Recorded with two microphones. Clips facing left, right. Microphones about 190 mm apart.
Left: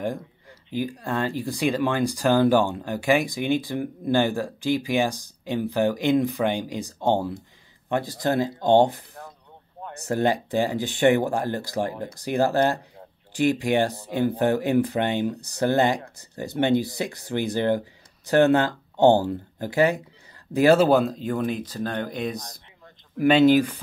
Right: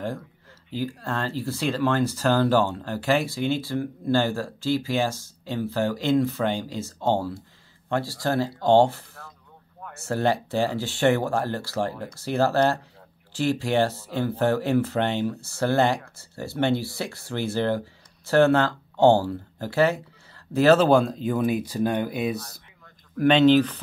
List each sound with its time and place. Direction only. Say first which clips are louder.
0.7 s speech: left 2 dB; 15° left (ahead or behind); by 22.4 s 5° right (ahead or behind)
23.1 s speech: even; 10° left (ahead or behind)